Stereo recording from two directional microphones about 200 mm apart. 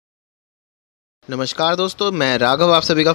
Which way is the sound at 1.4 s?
50° left (ahead or behind).